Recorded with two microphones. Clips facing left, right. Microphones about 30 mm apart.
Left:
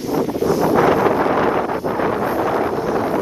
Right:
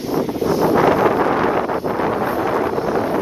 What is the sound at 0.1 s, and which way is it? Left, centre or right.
Wind noise, centre.